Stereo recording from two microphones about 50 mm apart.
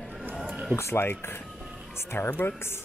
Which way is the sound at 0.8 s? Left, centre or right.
Left.